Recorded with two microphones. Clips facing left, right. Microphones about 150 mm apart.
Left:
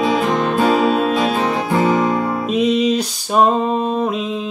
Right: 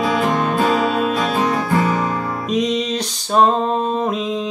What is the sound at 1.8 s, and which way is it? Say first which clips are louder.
Music: left 3 dB; 20° left (ahead or behind).